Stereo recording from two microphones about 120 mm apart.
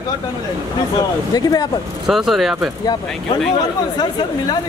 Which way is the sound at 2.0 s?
Centre (ahead or behind).